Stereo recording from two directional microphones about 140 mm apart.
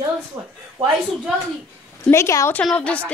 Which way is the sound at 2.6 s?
10° left (ahead or behind).